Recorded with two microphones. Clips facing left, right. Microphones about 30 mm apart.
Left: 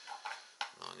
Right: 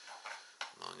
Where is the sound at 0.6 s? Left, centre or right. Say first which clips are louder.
Left 4 dB; left.